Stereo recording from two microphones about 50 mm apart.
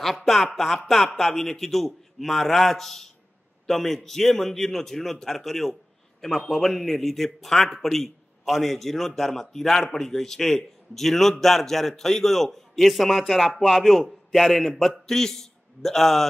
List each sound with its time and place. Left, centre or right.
0.0 s a man's voice: centre